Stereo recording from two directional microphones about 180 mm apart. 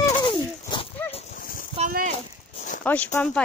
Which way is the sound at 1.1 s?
50° left (ahead or behind).